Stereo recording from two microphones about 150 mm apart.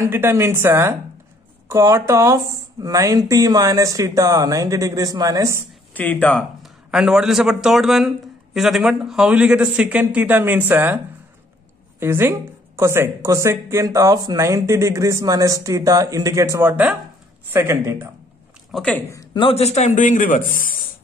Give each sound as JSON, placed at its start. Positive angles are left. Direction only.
{"t": 0.0, "sound": "a woman's voice", "side_deg": -15}
{"t": 5.9, "sound": "speech", "side_deg": 10}
{"t": 6.6, "sound": "speech", "side_deg": -5}
{"t": 12.0, "sound": "a woman's voice", "side_deg": -15}
{"t": 18.7, "sound": "speech", "side_deg": 5}
{"t": 19.3, "sound": "speech", "side_deg": 40}
{"t": 20.0, "sound": "speech", "side_deg": 60}